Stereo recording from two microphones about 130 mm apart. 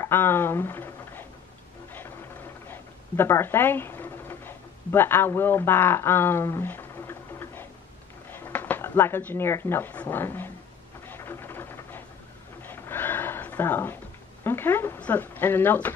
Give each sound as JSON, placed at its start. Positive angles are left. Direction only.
{"t": 0.0, "sound": "speech", "side_deg": 15}
{"t": 1.9, "sound": "a sound", "side_deg": 15}
{"t": 8.3, "sound": "speech", "side_deg": 15}
{"t": 11.1, "sound": "rain", "side_deg": 20}
{"t": 12.6, "sound": "a sound", "side_deg": 15}
{"t": 14.4, "sound": "speech", "side_deg": 15}